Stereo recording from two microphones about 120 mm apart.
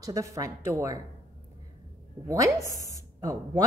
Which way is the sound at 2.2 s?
25° right (ahead or behind).